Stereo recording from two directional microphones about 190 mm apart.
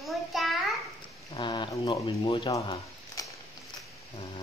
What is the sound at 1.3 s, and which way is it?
Speech, 25° left (ahead or behind).